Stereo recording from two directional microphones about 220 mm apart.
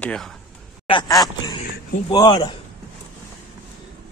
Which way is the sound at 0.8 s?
20° left (ahead or behind).